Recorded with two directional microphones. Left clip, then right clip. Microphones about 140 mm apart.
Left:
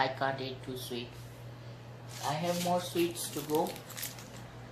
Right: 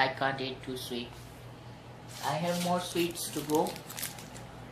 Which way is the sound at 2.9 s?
5° left (ahead or behind).